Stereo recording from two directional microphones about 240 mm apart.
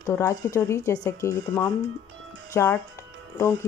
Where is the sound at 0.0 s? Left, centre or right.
Centre.